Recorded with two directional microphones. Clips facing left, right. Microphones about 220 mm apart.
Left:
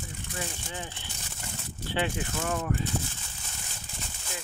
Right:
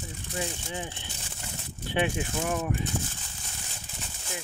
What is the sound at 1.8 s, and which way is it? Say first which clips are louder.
Speech: right 2 dB; 20° right (ahead or behind).